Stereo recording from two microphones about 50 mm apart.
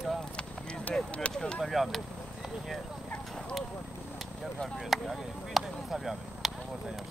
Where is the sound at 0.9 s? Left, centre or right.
Centre.